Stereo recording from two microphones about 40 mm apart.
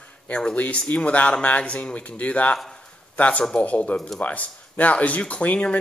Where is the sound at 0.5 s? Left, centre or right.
Left.